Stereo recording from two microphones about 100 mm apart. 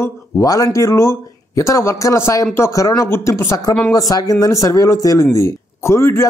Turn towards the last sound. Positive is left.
turn(degrees=25)  # may be behind; listen again after turning